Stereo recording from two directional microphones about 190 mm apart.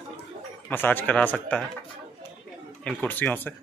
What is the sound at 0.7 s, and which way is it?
Speech, 10° left (ahead or behind).